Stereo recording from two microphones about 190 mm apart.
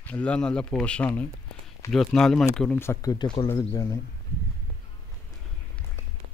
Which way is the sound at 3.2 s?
25° left (ahead or behind).